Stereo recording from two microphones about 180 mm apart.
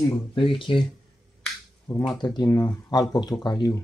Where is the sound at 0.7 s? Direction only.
30° left (ahead or behind).